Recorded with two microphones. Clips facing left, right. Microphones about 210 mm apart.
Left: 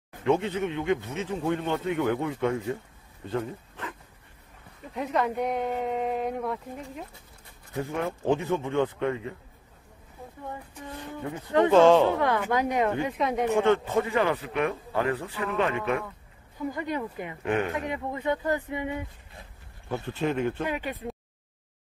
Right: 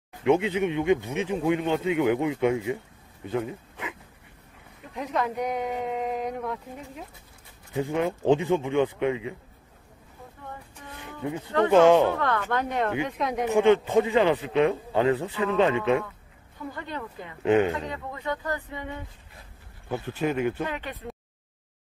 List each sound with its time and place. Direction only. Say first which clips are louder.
0.2 s speech: right 3 dB; 15° right (ahead or behind)
4.9 s speech: left 1 dB; centre (ahead or behind)
7.7 s speech: right 4 dB; 15° right (ahead or behind)
11.7 s speech: right 1 dB; 15° right (ahead or behind)
12.1 s speech: left 2 dB; 15° left (ahead or behind)
13.6 s a man's voice: right 6 dB; 15° right (ahead or behind)
16.7 s speech: left 4 dB; 15° left (ahead or behind)
17.5 s a man's voice: right 6 dB; 20° right (ahead or behind)
17.7 s speech: left 3 dB; 20° left (ahead or behind)
19.9 s speech: right 1 dB; 5° right (ahead or behind)
20.6 s speech: left 2 dB; 15° left (ahead or behind)